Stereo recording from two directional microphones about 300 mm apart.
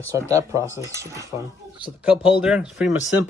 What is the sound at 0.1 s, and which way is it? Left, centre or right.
Speech, centre.